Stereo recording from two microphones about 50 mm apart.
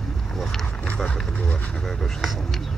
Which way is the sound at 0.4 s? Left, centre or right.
Centre.